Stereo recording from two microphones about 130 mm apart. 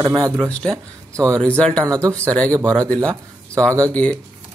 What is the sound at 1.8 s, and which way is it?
Speech, 25° right (ahead or behind).